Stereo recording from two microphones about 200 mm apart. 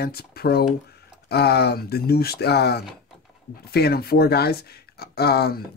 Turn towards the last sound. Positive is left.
turn(degrees=50)  # may be behind; listen again after turning